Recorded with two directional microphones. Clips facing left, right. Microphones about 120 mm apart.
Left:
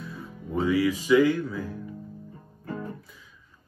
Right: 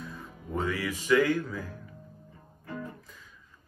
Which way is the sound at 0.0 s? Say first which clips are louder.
Left 3 dB; 10° left (ahead or behind).